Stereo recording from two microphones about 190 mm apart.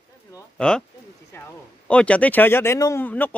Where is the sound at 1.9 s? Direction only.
5° left (ahead or behind).